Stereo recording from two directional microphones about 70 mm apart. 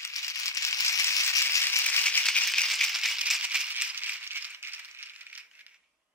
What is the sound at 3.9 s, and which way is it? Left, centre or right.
Rattle, right.